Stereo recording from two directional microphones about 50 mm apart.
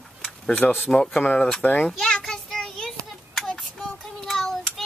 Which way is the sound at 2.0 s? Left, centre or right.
Centre.